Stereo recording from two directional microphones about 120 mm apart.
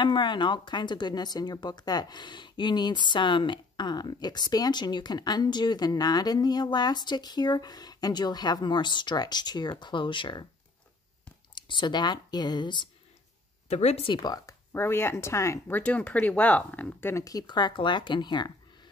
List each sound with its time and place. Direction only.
0.0 s speech: 40° left (ahead or behind)
11.5 s speech: 40° left (ahead or behind)
13.7 s speech: 65° left (ahead or behind)
14.0 s speech: 35° left (ahead or behind)
15.8 s speech: 10° left (ahead or behind)
17.2 s speech: 30° left (ahead or behind)